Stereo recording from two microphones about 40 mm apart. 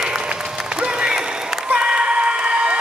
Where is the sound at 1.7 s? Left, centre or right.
Centre.